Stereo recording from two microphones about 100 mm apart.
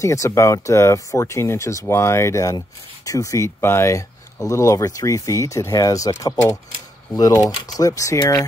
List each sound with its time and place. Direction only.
0.0 s speech: 30° left (ahead or behind)